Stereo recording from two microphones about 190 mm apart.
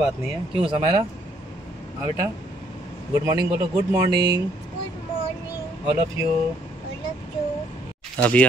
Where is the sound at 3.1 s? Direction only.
20° right (ahead or behind).